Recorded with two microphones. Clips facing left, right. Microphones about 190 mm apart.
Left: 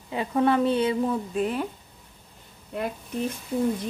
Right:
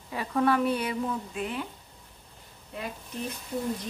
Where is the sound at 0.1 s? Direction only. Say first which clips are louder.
Left 3 dB; 20° left (ahead or behind).